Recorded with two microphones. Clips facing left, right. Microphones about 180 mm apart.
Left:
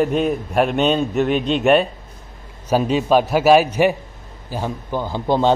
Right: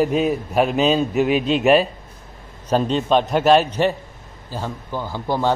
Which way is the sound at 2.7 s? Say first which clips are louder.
Left 2 dB; 10° left (ahead or behind).